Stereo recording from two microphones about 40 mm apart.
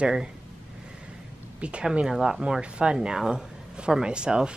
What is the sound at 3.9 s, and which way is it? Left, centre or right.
Speech, right.